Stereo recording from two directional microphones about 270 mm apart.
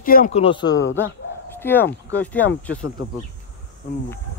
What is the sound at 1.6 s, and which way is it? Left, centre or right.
Speech, centre.